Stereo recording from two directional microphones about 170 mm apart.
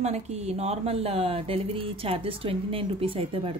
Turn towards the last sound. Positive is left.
turn(degrees=-35)  # may be behind; listen again after turning